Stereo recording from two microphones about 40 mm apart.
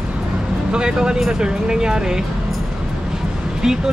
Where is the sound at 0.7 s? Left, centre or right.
Right.